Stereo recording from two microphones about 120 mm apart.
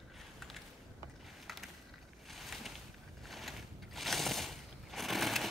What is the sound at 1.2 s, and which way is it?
Mechanisms, centre (ahead or behind).